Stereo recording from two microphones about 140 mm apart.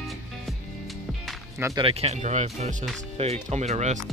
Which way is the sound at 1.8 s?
45° right (ahead or behind).